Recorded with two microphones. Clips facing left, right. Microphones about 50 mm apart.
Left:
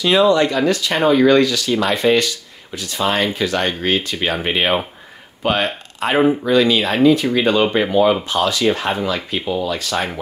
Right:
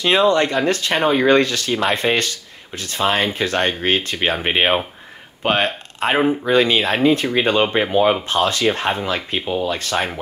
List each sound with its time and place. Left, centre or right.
0.0 s speech: right